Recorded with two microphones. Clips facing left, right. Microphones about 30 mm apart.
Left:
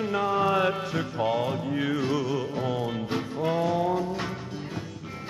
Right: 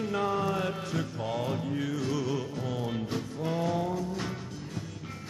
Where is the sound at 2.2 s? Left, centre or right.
Centre.